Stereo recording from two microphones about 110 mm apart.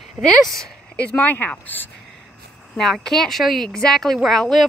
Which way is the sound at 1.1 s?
15° left (ahead or behind).